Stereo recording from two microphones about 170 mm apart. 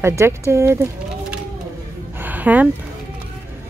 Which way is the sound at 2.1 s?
10° right (ahead or behind).